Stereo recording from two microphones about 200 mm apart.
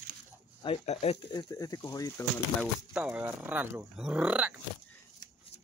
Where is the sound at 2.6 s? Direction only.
5° right (ahead or behind).